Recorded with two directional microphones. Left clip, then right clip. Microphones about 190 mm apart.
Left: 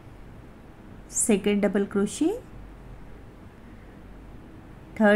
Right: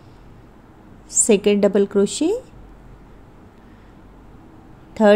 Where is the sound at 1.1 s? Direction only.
10° right (ahead or behind).